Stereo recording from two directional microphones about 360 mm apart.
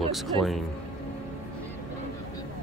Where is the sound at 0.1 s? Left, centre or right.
Centre.